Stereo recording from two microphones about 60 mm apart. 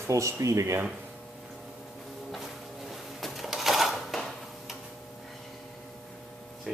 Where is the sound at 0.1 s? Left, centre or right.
Right.